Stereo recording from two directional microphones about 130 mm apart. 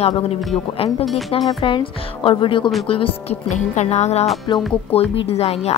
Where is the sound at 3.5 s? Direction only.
60° left (ahead or behind).